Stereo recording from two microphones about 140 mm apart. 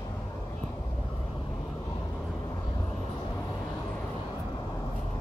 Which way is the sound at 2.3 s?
25° left (ahead or behind).